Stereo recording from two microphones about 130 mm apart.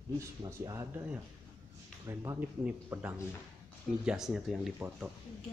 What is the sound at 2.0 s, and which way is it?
Speech, 25° right (ahead or behind).